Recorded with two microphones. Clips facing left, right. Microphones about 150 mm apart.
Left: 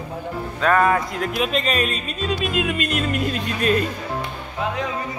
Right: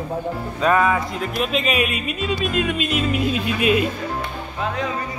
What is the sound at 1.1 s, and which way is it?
Speech, centre (ahead or behind).